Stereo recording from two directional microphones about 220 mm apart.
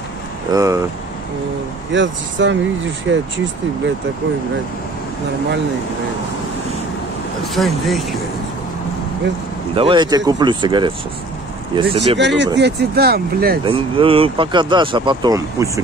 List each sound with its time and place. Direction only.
0.5 s speech: 15° right (ahead or behind)
2.0 s speech: 55° right (ahead or behind)
7.5 s speech: centre (ahead or behind)
9.8 s speech: 20° right (ahead or behind)
12.2 s speech: 55° right (ahead or behind)
13.7 s speech: 25° right (ahead or behind)